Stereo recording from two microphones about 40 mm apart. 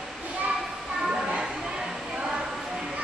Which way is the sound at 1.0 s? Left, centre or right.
Centre.